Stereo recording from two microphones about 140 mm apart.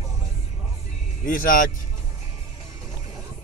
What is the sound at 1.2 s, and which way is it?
Speech, 80° left.